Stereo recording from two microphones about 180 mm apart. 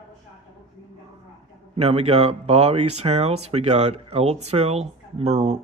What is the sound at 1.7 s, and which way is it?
Speech, 35° right (ahead or behind).